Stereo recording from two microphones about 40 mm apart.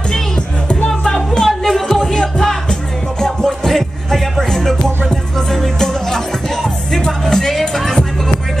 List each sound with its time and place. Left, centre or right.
0.8 s music: centre
1.6 s music: centre